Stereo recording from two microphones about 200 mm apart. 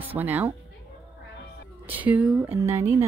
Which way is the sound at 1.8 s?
10° right (ahead or behind).